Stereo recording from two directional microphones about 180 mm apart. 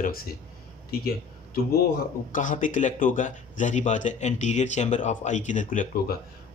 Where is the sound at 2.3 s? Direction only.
45° left (ahead or behind).